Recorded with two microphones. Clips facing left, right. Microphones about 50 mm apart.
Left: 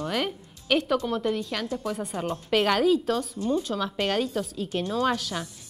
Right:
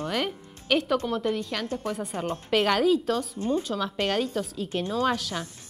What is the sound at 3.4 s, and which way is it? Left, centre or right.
Speech, right.